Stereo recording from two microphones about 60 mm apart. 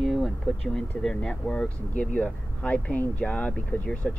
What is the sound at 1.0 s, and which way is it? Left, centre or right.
Speech, centre.